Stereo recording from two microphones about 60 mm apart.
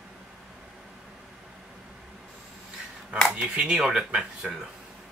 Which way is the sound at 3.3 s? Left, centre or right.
Centre.